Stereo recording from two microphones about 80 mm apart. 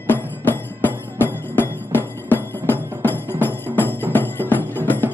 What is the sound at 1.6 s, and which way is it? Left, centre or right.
Music, left.